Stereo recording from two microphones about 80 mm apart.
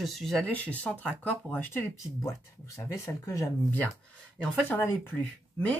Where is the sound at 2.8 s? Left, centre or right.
Left.